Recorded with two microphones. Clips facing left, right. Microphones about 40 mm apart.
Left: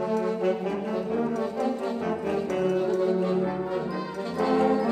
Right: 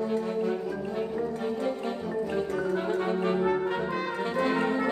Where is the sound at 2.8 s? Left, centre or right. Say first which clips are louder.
Left 3 dB; right.